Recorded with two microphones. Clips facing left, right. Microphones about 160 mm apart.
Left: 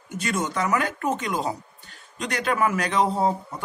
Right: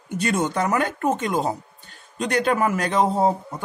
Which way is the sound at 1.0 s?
35° right (ahead or behind).